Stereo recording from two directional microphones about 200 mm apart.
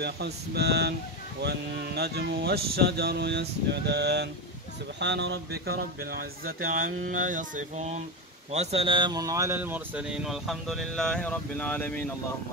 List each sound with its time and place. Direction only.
0.0 s speech: 55° right (ahead or behind)
7.1 s music: 40° right (ahead or behind)
8.5 s speech: 30° right (ahead or behind); by 12.1 s 10° left (ahead or behind)